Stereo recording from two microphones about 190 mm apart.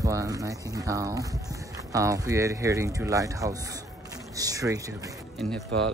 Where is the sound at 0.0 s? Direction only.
15° right (ahead or behind).